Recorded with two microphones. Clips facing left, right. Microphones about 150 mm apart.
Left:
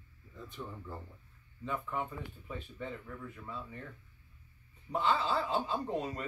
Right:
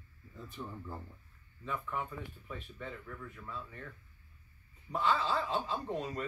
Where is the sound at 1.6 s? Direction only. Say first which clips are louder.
Left 2 dB; 30° left (ahead or behind).